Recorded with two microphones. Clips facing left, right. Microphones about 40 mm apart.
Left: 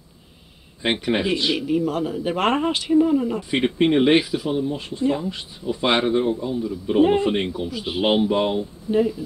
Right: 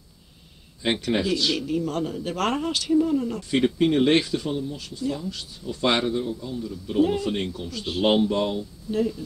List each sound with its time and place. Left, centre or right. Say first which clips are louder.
0.8 s speech: left 2 dB; left
2.3 s speech: left 4 dB; left
4.6 s speech: left 7 dB; left
6.1 s a man's voice: left 7 dB; left
6.4 s speech: left 7 dB; left
7.0 s speech: left 5 dB; left